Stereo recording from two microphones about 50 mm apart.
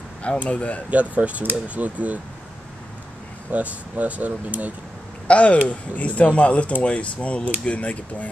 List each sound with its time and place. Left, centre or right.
0.4 s speech: left
0.8 s speech: right
3.5 s speech: right
5.3 s speech: left